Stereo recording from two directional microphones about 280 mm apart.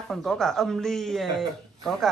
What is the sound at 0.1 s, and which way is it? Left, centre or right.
Speech, centre.